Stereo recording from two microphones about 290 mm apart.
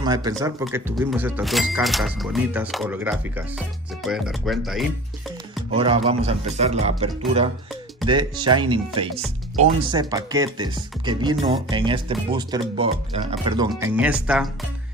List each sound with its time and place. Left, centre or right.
0.0 s speech: centre
5.7 s speech: centre
13.7 s speech: centre